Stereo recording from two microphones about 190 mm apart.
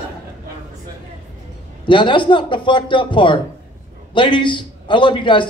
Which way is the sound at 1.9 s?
25° left (ahead or behind).